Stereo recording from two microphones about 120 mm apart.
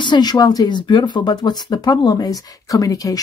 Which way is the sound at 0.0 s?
35° left (ahead or behind).